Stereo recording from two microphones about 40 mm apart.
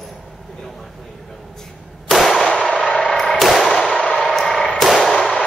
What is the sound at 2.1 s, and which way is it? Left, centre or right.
Gunshot, centre.